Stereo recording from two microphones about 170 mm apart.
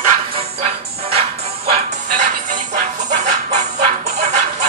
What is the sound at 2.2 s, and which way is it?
Music, 45° right (ahead or behind).